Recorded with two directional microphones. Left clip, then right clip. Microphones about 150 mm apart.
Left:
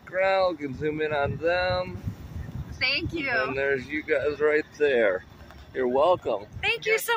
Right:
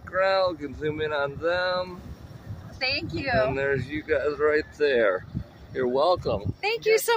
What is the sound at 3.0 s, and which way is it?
Speech, 20° right (ahead or behind).